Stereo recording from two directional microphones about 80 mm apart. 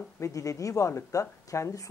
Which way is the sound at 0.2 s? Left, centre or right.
Left.